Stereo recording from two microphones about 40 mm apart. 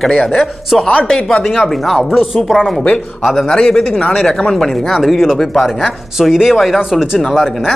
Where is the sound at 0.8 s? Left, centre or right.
Left.